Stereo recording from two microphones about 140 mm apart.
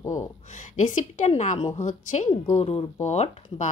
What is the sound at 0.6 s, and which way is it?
Speech, 60° left (ahead or behind).